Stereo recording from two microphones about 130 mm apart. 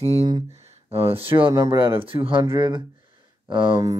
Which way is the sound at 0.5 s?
55° right (ahead or behind).